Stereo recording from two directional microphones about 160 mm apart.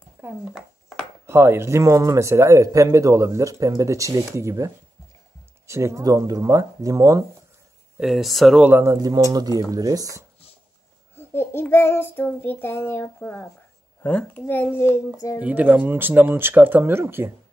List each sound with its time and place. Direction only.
0.2 s speech: 10° right (ahead or behind)
0.6 s a sound: centre (ahead or behind)
1.2 s speech: 15° right (ahead or behind)
8.0 s speech: centre (ahead or behind)
8.9 s speech: 25° right (ahead or behind)
11.1 s child singing: 15° left (ahead or behind)
15.1 s speech: 20° left (ahead or behind)
15.4 s speech: 10° right (ahead or behind)